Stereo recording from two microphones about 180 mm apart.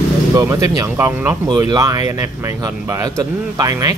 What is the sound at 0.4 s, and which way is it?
Speech, 20° right (ahead or behind).